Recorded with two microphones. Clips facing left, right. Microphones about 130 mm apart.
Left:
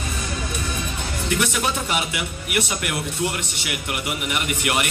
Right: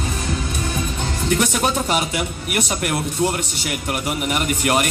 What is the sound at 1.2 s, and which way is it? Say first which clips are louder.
Speech: right 4 dB; 40° right (ahead or behind).